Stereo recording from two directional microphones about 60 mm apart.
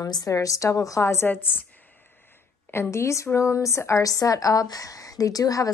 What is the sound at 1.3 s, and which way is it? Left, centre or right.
Speech, left.